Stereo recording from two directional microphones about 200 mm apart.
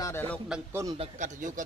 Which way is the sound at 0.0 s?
10° left (ahead or behind).